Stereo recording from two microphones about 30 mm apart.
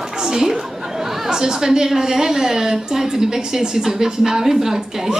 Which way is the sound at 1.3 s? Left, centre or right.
Centre.